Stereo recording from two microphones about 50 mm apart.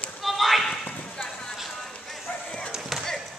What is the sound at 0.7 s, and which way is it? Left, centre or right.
Clip-clop, centre.